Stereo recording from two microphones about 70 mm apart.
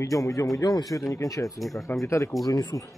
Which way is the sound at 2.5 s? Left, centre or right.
Left.